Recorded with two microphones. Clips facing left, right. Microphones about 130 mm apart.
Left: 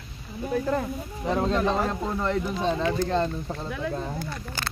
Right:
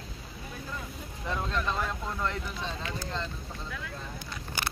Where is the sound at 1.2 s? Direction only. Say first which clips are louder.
Left 8 dB; 35° left (ahead or behind).